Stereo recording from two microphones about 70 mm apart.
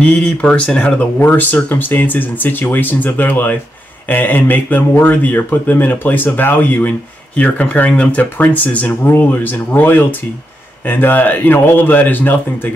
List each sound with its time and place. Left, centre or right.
0.0 s speech: centre